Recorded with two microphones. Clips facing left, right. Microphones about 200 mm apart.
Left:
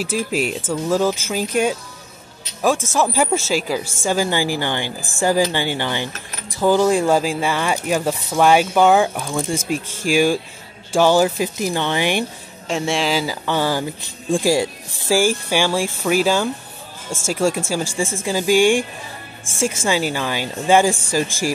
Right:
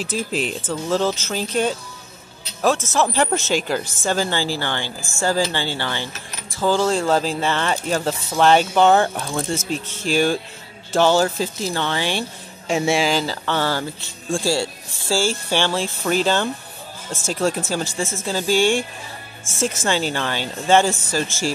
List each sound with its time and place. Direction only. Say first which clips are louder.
0.0 s speech: left 3 dB; 10° left (ahead or behind)
12.6 s speech: right 2 dB; 5° right (ahead or behind)
13.1 s speech: left 1 dB; 10° left (ahead or behind)